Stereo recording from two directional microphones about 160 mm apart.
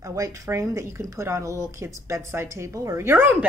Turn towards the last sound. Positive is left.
turn(degrees=-15)  # may be behind; listen again after turning